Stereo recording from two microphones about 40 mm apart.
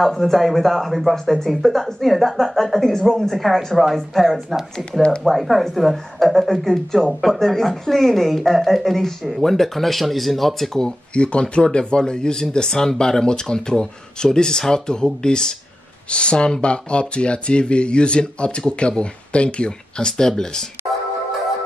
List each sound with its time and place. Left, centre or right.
0.0 s speech: centre
11.1 s speech: left